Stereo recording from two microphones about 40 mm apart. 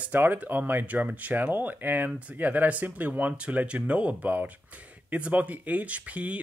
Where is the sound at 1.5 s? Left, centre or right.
Right.